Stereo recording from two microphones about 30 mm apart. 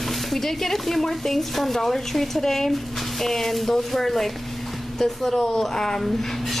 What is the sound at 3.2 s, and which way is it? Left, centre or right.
Speech, centre.